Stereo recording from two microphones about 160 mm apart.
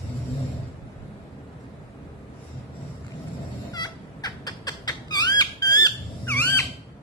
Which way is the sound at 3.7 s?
25° left (ahead or behind).